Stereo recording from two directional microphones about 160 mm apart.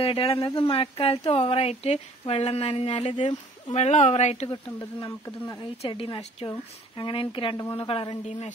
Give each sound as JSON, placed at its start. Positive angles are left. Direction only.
{"t": 0.0, "sound": "speech", "side_deg": 35}